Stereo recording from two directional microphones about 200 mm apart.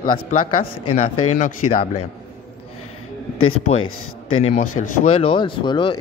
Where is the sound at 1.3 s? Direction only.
40° left (ahead or behind).